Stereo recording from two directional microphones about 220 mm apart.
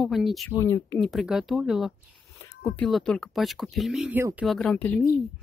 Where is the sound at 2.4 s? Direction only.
15° left (ahead or behind).